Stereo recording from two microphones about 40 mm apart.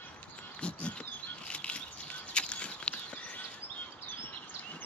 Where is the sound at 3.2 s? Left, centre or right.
Left.